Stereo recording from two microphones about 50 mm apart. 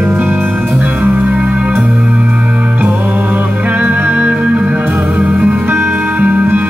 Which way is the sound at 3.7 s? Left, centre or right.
Right.